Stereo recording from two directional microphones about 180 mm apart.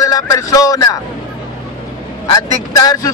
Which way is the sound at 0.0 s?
20° left (ahead or behind).